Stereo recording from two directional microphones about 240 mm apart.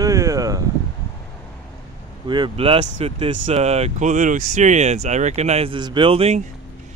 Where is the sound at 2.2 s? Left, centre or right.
Centre.